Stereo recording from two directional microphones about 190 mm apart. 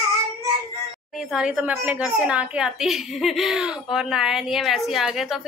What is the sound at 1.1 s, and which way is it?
A woman's voice, 5° right (ahead or behind).